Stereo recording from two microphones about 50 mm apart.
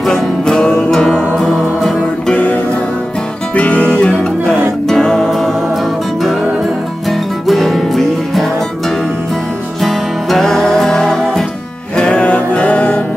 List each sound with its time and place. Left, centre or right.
0.0 s music: centre
2.3 s music: left; by 5.5 s centre
7.1 s music: centre
12.0 s music: left